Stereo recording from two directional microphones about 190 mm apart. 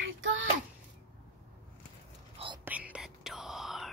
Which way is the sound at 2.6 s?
5° right (ahead or behind).